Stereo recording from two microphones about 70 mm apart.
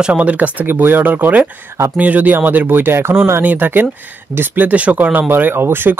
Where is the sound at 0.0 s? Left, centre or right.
Centre.